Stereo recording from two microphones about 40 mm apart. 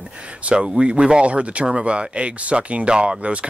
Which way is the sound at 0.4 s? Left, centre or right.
Right.